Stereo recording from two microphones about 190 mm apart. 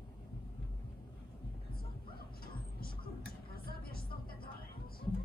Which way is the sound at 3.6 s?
50° left (ahead or behind).